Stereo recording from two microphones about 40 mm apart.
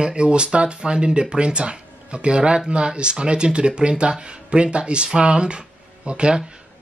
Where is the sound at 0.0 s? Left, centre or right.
Right.